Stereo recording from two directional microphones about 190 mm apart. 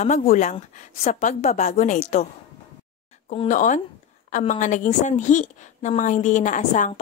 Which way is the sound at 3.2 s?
40° left (ahead or behind).